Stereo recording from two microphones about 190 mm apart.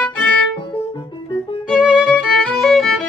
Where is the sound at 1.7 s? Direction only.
5° left (ahead or behind).